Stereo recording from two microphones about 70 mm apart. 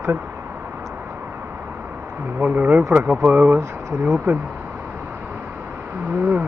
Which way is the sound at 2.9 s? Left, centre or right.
Right.